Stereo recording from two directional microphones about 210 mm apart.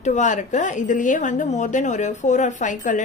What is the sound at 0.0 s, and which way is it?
A woman's voice, 35° left (ahead or behind).